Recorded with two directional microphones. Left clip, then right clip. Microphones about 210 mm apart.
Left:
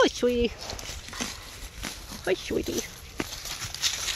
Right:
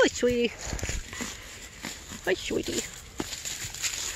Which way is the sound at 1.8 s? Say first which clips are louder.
Left 2 dB; centre (ahead or behind).